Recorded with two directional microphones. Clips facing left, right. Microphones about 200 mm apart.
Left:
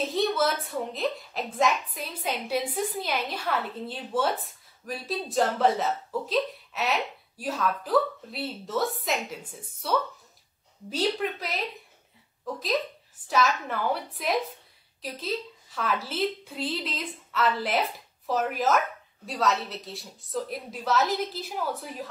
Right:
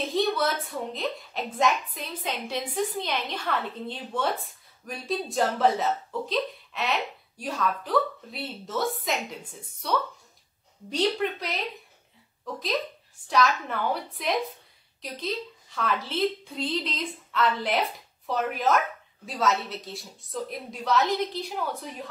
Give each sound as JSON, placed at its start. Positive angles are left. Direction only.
{"t": 0.0, "sound": "speech", "side_deg": 0}
{"t": 13.3, "sound": "speech", "side_deg": 0}